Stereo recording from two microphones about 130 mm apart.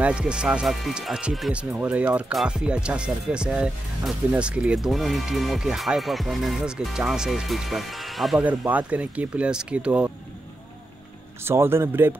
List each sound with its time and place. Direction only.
0.0 s speech: 5° right (ahead or behind)
8.5 s speech: 10° right (ahead or behind)
11.4 s speech: 20° right (ahead or behind)